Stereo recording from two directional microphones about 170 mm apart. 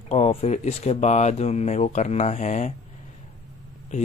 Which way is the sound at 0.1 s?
35° left (ahead or behind).